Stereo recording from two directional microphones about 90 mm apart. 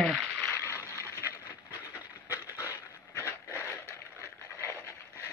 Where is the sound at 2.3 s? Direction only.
35° left (ahead or behind).